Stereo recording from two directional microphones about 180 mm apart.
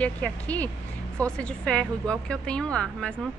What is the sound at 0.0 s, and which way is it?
A woman's voice, 10° left (ahead or behind).